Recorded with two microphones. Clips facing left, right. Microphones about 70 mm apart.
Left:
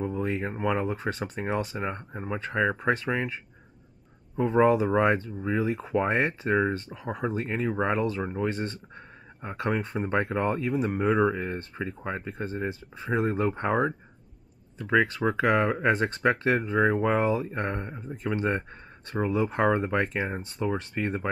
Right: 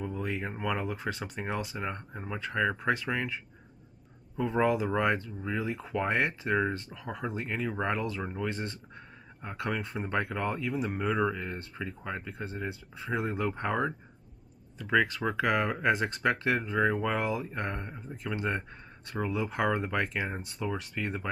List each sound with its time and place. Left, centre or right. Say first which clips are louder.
0.0 s speech: left 5 dB; left
4.4 s speech: left 6 dB; left
13.6 s speech: left 5 dB; left